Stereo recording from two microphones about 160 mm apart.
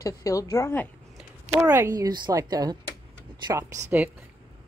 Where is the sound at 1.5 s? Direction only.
15° right (ahead or behind).